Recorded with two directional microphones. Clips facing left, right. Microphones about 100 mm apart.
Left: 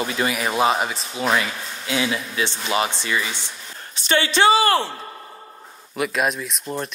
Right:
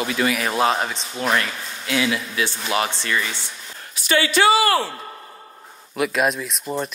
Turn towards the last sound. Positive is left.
turn(degrees=0)  # may be behind; listen again after turning